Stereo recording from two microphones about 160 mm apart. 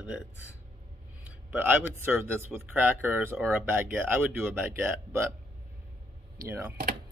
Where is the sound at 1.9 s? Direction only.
15° right (ahead or behind).